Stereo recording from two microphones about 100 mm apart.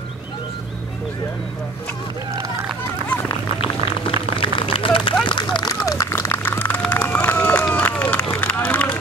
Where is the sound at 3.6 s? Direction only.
65° left (ahead or behind).